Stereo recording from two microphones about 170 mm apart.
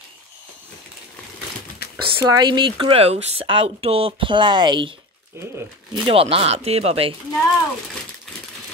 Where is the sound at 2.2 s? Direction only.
20° right (ahead or behind).